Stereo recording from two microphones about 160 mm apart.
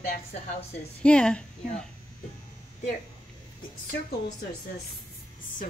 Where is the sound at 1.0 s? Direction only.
5° left (ahead or behind).